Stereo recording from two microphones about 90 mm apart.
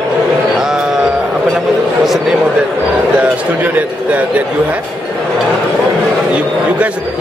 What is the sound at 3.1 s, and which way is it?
A man's voice, 15° right (ahead or behind).